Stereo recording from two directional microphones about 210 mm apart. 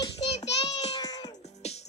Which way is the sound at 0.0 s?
25° left (ahead or behind).